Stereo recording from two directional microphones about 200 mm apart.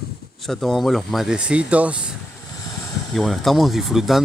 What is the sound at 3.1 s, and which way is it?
Speech, centre (ahead or behind).